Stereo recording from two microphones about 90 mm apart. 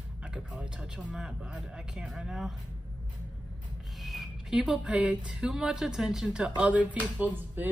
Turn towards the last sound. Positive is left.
turn(degrees=-15)  # may be behind; listen again after turning